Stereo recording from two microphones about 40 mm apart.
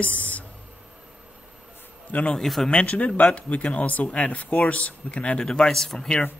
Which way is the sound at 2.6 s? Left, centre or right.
Left.